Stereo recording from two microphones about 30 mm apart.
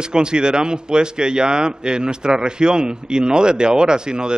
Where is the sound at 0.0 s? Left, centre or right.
Right.